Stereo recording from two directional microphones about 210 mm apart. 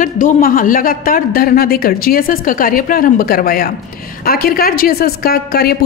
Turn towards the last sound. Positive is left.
turn(degrees=45)  # may be behind; listen again after turning